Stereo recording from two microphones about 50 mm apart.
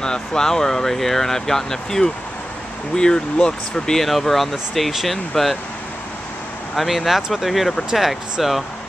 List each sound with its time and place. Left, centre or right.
0.0 s speech: centre
4.0 s speech: centre
6.7 s speech: centre